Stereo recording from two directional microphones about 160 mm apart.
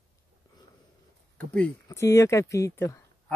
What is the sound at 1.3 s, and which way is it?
Speech, 10° left (ahead or behind).